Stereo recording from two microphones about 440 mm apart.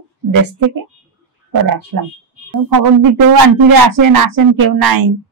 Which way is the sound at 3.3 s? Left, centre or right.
Right.